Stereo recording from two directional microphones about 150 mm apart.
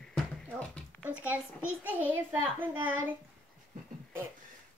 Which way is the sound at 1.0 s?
10° right (ahead or behind).